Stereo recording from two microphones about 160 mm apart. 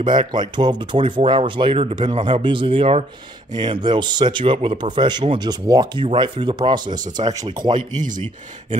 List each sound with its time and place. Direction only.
0.0 s speech: 30° right (ahead or behind)